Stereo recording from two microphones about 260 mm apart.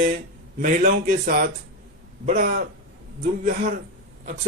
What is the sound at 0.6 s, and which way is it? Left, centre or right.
Speech, right.